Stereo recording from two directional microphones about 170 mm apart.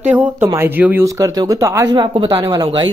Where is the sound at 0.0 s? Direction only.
10° right (ahead or behind); by 2.9 s 25° right (ahead or behind).